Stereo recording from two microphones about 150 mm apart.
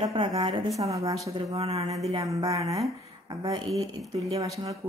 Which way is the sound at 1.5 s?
45° right (ahead or behind).